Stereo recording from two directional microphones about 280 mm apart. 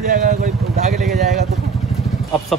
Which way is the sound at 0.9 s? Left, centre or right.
Centre.